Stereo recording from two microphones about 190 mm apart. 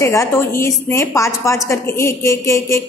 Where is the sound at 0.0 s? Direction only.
15° left (ahead or behind).